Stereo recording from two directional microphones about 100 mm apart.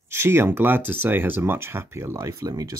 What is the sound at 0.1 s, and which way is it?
Speech, 25° right (ahead or behind).